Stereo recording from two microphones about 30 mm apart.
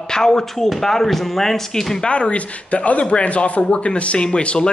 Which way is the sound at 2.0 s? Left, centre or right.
Left.